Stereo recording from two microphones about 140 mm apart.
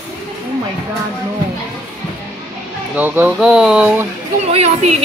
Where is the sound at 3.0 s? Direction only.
10° right (ahead or behind).